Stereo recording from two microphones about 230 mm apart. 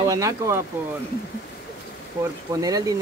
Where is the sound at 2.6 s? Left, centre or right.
Centre.